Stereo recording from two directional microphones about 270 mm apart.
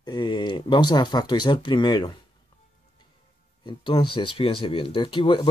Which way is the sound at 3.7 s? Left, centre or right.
Centre.